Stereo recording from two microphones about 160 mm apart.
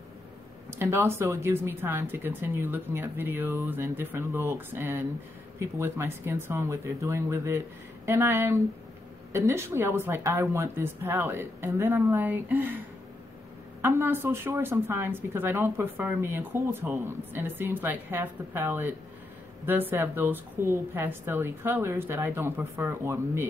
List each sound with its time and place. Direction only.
0.7 s a woman's voice: 15° right (ahead or behind)